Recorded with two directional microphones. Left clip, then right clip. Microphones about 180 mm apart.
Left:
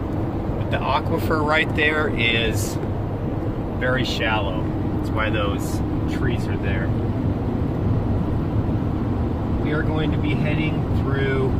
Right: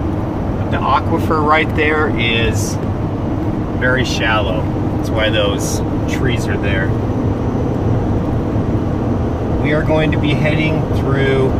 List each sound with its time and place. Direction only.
1.5 s speech: centre (ahead or behind)